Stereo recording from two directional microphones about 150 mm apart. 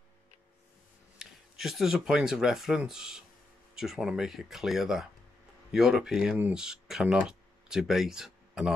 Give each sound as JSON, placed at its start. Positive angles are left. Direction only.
{"t": 1.1, "sound": "speech", "side_deg": -5}